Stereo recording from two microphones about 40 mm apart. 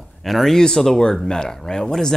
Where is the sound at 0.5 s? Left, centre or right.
Centre.